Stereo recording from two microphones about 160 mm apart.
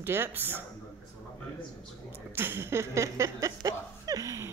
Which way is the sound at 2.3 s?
15° right (ahead or behind).